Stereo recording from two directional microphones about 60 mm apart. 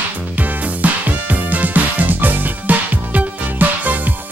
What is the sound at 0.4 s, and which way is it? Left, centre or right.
Music, right.